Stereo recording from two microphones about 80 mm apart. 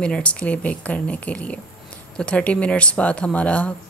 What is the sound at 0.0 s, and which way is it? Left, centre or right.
Speech, centre.